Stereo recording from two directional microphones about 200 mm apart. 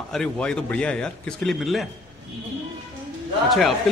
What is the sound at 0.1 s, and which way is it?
A man's voice, 5° left (ahead or behind).